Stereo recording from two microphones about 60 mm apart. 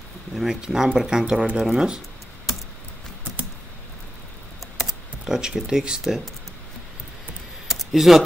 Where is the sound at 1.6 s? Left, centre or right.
Centre.